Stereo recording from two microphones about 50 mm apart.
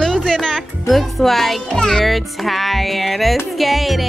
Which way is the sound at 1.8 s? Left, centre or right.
Centre.